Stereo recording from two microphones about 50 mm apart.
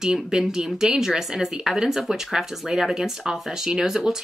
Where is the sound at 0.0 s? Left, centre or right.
Centre.